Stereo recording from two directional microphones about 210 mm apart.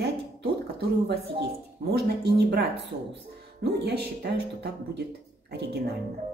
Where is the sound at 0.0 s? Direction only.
50° right (ahead or behind).